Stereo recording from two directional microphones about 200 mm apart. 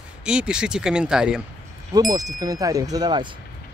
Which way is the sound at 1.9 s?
20° right (ahead or behind).